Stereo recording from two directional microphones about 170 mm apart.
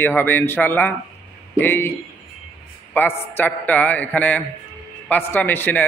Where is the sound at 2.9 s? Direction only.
10° left (ahead or behind).